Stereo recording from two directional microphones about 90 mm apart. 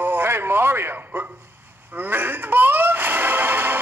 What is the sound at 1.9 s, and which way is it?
Music, 20° right (ahead or behind).